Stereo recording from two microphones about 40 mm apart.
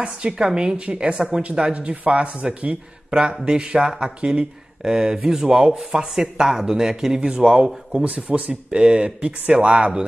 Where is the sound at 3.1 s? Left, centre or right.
Centre.